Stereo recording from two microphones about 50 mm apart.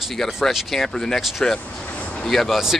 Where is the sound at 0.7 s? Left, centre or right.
Centre.